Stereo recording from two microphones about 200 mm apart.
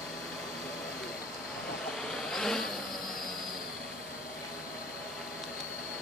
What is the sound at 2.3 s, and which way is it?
Vehicle, centre (ahead or behind).